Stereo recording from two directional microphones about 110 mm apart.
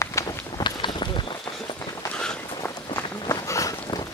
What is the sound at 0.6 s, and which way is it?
Run, 45° left (ahead or behind).